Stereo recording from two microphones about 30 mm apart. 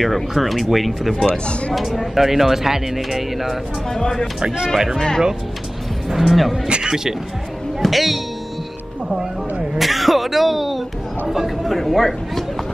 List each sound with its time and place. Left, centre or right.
0.0 s speech: centre
3.9 s speech: centre
4.6 s speech: centre
4.9 s speech: centre
6.0 s speech: centre
6.7 s speech: right
7.8 s speech: centre
9.8 s speech: centre